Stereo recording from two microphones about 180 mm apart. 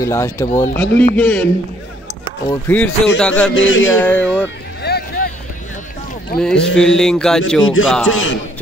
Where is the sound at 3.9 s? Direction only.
10° left (ahead or behind).